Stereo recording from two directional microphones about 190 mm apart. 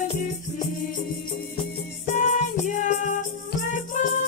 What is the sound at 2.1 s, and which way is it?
Music, 40° left (ahead or behind).